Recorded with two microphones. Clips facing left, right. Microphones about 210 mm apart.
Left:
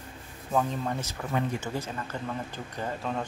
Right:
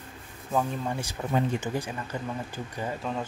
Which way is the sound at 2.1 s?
15° right (ahead or behind).